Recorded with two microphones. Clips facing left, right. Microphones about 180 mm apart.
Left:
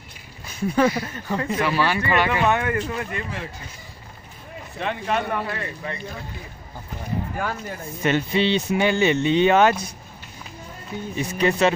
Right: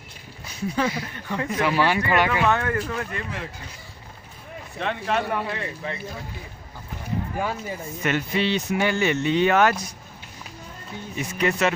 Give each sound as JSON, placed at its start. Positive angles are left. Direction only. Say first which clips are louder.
{"t": 0.5, "sound": "speech", "louder": "left 5 dB", "side_deg": 50}
{"t": 1.7, "sound": "speech", "louder": "right 2 dB", "side_deg": -15}
{"t": 2.4, "sound": "speech", "louder": "left 1 dB", "side_deg": 10}
{"t": 4.7, "sound": "speech", "louder": "even", "side_deg": 0}
{"t": 7.3, "sound": "speech", "louder": "right 1 dB", "side_deg": -5}
{"t": 8.0, "sound": "speech", "louder": "left 4 dB", "side_deg": 25}
{"t": 11.1, "sound": "speech", "louder": "left 3 dB", "side_deg": 30}